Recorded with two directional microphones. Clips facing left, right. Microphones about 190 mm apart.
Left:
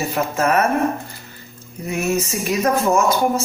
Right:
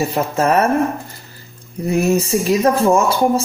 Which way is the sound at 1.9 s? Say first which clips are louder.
Right 6 dB; 35° right (ahead or behind).